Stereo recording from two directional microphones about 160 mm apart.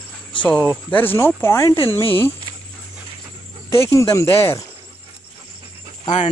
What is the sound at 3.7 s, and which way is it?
Speech, 20° left (ahead or behind).